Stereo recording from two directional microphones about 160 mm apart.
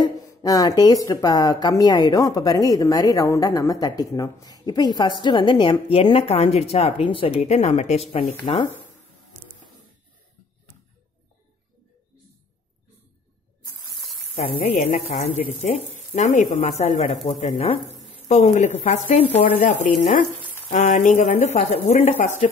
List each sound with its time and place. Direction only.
0.0 s speech: 20° left (ahead or behind); by 8.6 s 40° left (ahead or behind)
13.9 s sizzle: centre (ahead or behind)
15.2 s speech: 45° left (ahead or behind)